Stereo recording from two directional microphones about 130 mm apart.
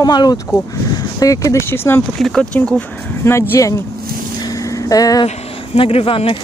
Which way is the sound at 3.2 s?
20° left (ahead or behind).